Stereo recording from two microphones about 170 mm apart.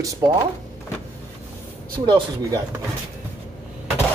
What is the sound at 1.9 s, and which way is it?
Speech, 30° right (ahead or behind).